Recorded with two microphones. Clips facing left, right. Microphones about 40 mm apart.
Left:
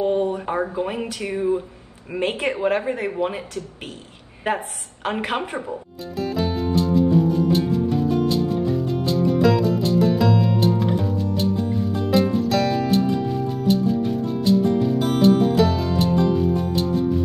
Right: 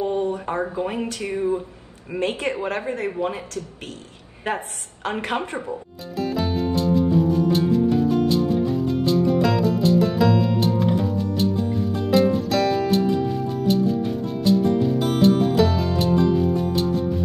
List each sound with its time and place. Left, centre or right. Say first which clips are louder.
0.0 s a sound: left 2 dB; left
0.5 s a woman's voice: left 1 dB; centre
2.1 s a woman's voice: left 1 dB; centre
4.5 s a woman's voice: left 2 dB; centre
5.7 s music: even; centre